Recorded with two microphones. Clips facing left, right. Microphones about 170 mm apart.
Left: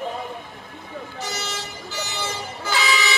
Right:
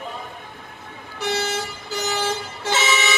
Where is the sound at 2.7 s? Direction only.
25° right (ahead or behind).